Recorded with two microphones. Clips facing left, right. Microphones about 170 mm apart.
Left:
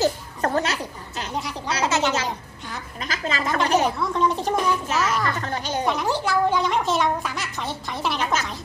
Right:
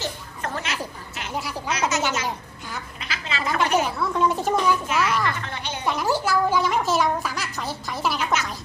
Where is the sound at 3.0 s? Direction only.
45° left (ahead or behind).